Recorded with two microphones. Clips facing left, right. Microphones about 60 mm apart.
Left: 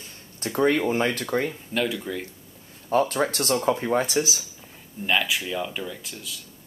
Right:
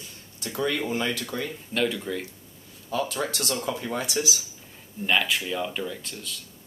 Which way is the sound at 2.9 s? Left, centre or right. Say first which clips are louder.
Left 6 dB; left.